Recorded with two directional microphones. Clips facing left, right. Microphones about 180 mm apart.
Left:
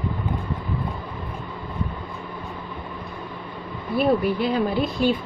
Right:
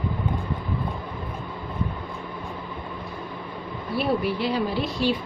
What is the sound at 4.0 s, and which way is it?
Speech, 50° left (ahead or behind).